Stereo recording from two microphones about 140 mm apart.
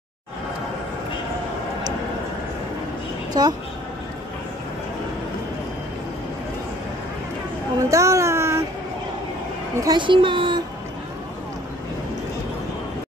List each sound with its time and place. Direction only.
3.4 s a woman's voice: 30° right (ahead or behind)
7.9 s a sound: 20° right (ahead or behind)
9.8 s a child's voice: 30° right (ahead or behind)